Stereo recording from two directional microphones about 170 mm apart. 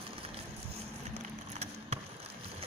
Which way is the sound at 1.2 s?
40° right (ahead or behind).